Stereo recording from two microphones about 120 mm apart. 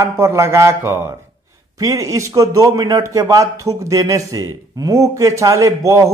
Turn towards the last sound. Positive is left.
turn(degrees=-25)  # may be behind; listen again after turning